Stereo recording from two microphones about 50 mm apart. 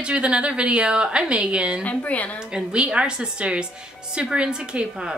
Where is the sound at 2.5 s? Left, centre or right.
Right.